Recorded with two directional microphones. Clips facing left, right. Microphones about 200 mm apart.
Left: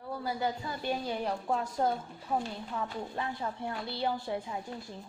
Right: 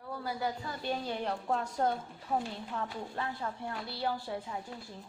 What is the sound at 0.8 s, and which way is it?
A woman's voice, 10° left (ahead or behind).